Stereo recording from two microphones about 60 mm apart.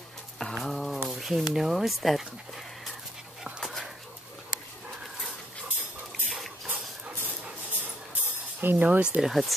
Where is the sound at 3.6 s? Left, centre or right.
Centre.